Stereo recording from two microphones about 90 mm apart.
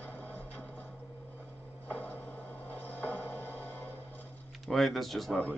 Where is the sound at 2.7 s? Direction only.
20° left (ahead or behind).